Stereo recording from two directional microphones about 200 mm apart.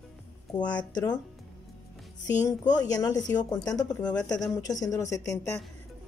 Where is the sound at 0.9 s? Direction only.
20° left (ahead or behind).